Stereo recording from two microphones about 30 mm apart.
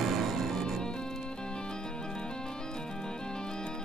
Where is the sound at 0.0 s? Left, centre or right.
Centre.